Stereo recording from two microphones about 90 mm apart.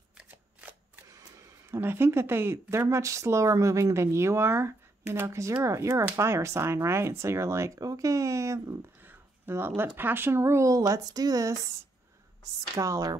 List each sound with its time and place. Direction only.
0.2 s shuffling cards: 15° right (ahead or behind)
1.7 s a woman's voice: 25° right (ahead or behind)
9.0 s a sound: 25° right (ahead or behind)
9.8 s a woman's voice: 25° right (ahead or behind); by 11.7 s 40° right (ahead or behind)
12.7 s a woman's voice: 35° right (ahead or behind)